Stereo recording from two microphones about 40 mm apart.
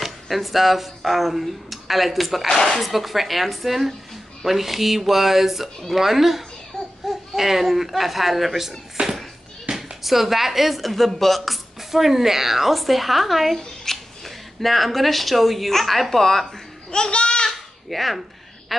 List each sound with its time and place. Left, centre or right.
0.0 s speech: centre
2.5 s speech: centre
2.8 s speech: centre
9.0 s a sound: right
9.8 s speech: centre
16.9 s a sound: left
17.8 s speech: centre
18.7 s quack: centre